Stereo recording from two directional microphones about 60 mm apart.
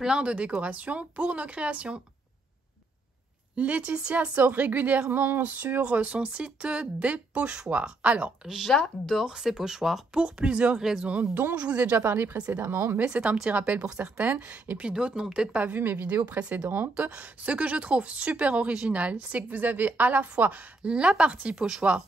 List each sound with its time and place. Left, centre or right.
0.0 s speech: centre
3.5 s speech: right
8.5 s speech: centre
10.2 s speech: centre
11.1 s speech: right
12.0 s speech: right
12.4 s speech: right
12.6 s speech: right
13.0 s speech: centre
15.6 s speech: right
16.6 s speech: right
17.0 s speech: right